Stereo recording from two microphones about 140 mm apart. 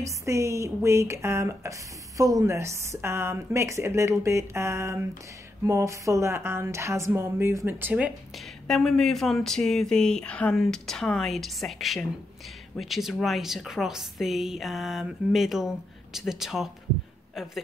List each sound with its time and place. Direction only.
0.0 s speech: 20° right (ahead or behind)
8.6 s a woman's voice: 5° left (ahead or behind)